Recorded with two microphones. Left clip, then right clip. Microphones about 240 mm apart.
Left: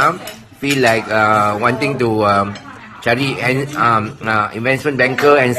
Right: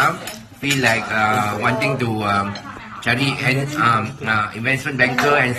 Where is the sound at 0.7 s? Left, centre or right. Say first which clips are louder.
Left 4 dB; left.